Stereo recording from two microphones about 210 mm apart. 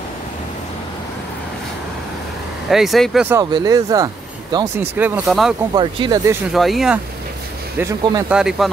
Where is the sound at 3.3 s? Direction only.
20° right (ahead or behind); by 5.5 s centre (ahead or behind).